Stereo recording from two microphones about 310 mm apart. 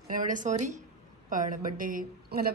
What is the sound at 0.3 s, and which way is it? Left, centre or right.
A woman's voice, right.